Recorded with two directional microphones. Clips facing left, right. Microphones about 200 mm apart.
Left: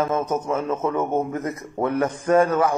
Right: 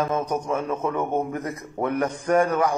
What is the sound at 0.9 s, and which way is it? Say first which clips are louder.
Speech: left 2 dB; 25° left (ahead or behind).